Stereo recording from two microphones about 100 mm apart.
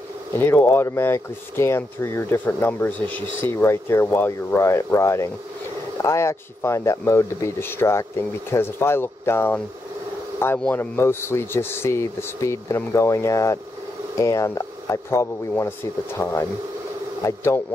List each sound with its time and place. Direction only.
0.4 s speech: 20° left (ahead or behind)
10.6 s speech: 20° left (ahead or behind)